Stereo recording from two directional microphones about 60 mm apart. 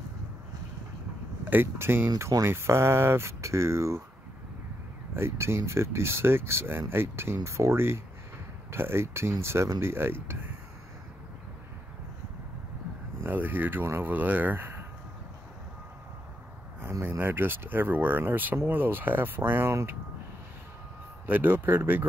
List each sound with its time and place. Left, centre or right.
1.4 s speech: right
5.1 s speech: right
13.2 s speech: right
17.2 s speech: right
21.3 s speech: right